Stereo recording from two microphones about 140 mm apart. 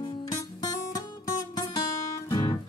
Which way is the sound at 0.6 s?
25° left (ahead or behind).